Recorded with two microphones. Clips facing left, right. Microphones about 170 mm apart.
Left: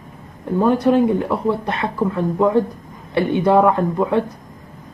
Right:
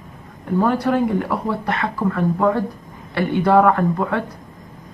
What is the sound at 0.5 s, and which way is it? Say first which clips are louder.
Speech: left 3 dB; 20° left (ahead or behind).